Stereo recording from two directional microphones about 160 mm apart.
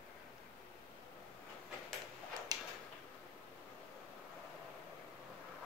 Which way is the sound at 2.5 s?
25° right (ahead or behind).